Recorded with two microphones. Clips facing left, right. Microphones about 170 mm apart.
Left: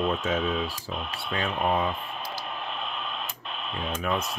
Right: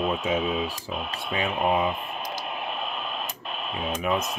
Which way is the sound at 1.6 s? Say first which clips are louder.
Right 2 dB; 5° right (ahead or behind).